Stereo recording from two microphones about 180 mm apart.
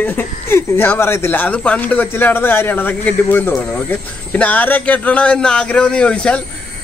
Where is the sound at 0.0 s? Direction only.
10° left (ahead or behind).